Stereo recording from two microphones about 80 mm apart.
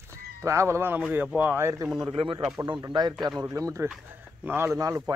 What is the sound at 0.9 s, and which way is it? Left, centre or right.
Speech, right.